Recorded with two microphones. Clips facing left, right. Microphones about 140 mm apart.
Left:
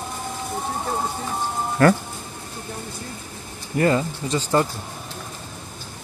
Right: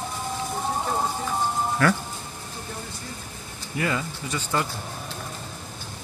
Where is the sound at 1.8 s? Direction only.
45° left (ahead or behind).